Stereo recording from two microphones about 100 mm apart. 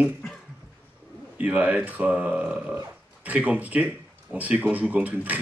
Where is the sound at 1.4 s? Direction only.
15° right (ahead or behind).